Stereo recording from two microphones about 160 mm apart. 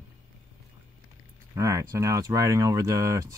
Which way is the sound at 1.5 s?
20° right (ahead or behind).